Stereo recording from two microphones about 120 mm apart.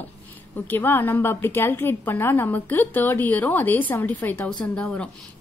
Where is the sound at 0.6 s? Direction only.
15° left (ahead or behind).